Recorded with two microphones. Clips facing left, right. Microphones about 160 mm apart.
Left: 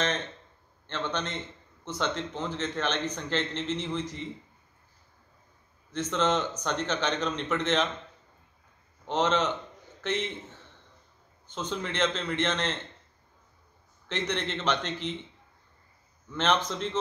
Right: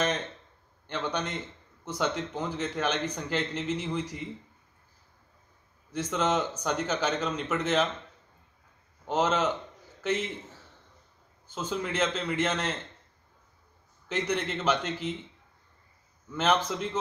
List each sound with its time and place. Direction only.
0.8 s a man's voice: 10° right (ahead or behind)
5.9 s a man's voice: 10° right (ahead or behind)
9.0 s a man's voice: 5° right (ahead or behind)
14.0 s a man's voice: 10° right (ahead or behind)
16.3 s a man's voice: 10° right (ahead or behind)